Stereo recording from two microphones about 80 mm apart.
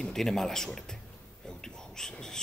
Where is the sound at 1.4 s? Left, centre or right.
Centre.